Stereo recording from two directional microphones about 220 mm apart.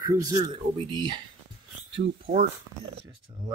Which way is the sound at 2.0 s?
35° right (ahead or behind).